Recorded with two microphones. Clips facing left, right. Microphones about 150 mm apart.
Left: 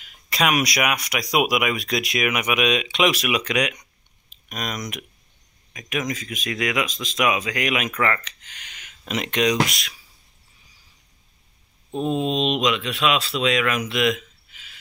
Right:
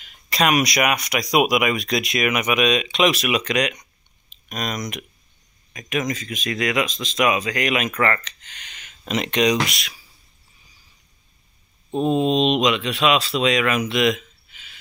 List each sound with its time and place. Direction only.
0.0 s speech: 5° left (ahead or behind)
11.9 s mantra: 40° right (ahead or behind)
12.3 s speech: centre (ahead or behind)